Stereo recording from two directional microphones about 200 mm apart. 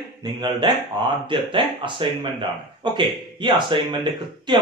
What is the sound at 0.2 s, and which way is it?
Speech, 20° right (ahead or behind).